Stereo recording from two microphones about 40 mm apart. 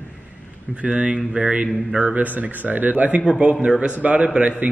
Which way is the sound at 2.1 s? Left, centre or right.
Right.